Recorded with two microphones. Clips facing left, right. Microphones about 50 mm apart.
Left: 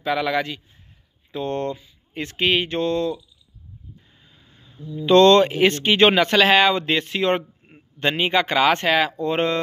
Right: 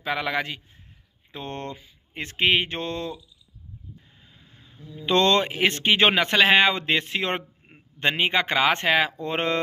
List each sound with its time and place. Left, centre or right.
0.0 s speech: right
4.6 s speech: centre